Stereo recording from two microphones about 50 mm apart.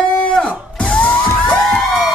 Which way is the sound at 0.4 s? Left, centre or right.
Centre.